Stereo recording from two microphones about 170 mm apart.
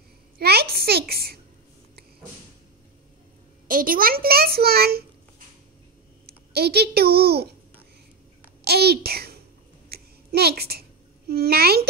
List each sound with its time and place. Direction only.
0.4 s a sound: 70° right (ahead or behind)
3.6 s a child's voice: 55° right (ahead or behind)
6.2 s a child's voice: 70° right (ahead or behind)
8.6 s a child's voice: 70° right (ahead or behind)
9.8 s babbling: 65° right (ahead or behind)